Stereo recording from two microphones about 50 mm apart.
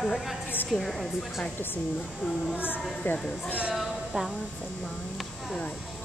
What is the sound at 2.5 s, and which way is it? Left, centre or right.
Speech, left.